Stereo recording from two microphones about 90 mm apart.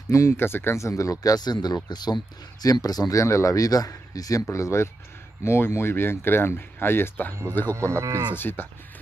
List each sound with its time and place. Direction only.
0.1 s speech: 30° left (ahead or behind)
7.7 s cattle: 30° right (ahead or behind)
8.3 s speech: 25° left (ahead or behind)